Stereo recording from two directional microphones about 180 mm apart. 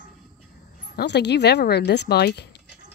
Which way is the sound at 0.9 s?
70° left (ahead or behind).